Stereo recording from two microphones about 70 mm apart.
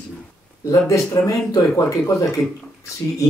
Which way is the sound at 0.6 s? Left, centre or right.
Left.